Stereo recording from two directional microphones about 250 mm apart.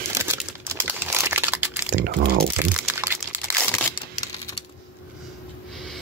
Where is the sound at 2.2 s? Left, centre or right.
Right.